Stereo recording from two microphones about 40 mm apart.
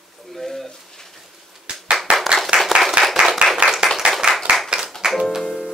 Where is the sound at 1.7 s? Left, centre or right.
Right.